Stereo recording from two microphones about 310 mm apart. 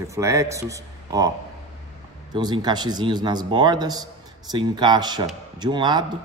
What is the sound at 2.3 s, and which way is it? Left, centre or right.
A man's voice, centre.